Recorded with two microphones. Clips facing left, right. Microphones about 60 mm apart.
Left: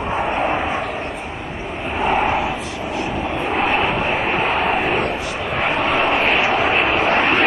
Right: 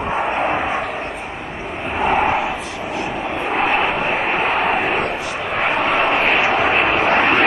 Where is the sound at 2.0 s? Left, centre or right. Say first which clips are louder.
Right 1 dB; right.